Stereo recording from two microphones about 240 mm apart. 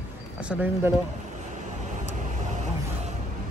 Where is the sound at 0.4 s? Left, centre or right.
Centre.